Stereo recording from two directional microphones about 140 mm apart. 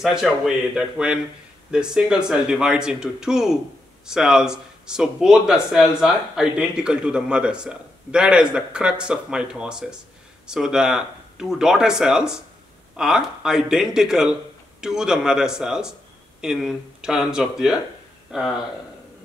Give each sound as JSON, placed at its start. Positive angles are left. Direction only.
{"t": 0.0, "sound": "speech", "side_deg": -5}